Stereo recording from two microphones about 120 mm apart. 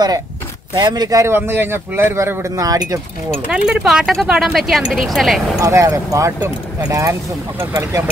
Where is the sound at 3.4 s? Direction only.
10° right (ahead or behind).